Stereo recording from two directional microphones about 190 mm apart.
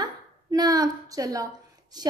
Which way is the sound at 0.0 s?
20° right (ahead or behind).